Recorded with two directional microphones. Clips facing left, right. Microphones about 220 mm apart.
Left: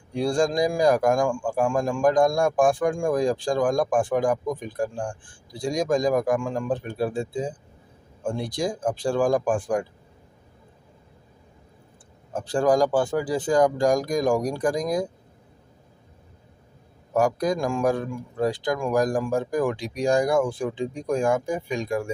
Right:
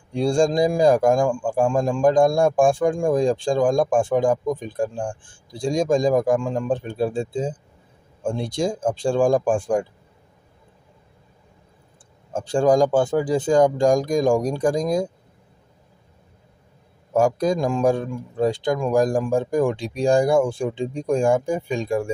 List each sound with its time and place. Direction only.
0.1 s speech: 25° right (ahead or behind)
12.3 s speech: 25° right (ahead or behind)
17.1 s speech: 25° right (ahead or behind)